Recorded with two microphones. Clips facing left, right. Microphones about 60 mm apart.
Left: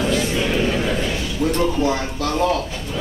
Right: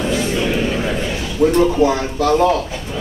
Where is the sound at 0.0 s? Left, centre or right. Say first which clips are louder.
Right 2 dB; centre.